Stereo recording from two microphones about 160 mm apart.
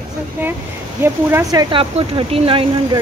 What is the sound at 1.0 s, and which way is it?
Speech, 15° right (ahead or behind).